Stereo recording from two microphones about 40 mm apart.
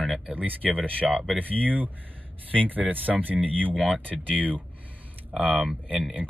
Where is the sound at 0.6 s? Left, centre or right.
Left.